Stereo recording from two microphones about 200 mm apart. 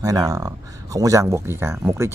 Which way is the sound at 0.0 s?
15° right (ahead or behind).